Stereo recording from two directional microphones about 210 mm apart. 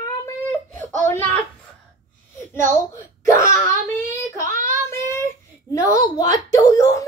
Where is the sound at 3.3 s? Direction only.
15° left (ahead or behind).